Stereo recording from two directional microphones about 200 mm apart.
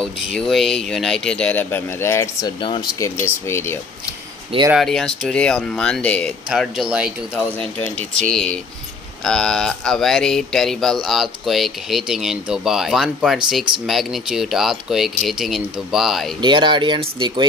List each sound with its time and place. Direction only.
0.0 s speech: centre (ahead or behind)
2.6 s speech: 25° left (ahead or behind)
3.0 s speech: 15° left (ahead or behind)
4.7 s speech: centre (ahead or behind)
16.3 s speech: 25° right (ahead or behind)